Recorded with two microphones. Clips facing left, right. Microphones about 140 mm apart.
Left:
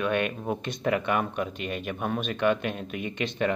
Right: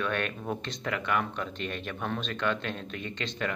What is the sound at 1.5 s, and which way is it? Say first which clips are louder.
Speech: left 3 dB; 10° left (ahead or behind).